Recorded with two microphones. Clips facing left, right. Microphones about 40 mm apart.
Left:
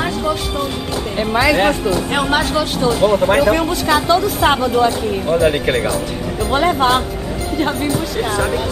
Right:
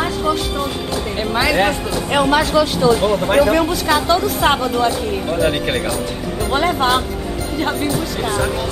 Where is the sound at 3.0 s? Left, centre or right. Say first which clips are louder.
Left 1 dB; centre.